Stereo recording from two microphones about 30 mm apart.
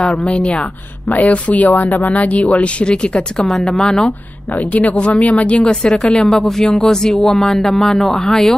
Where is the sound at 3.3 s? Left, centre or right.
Centre.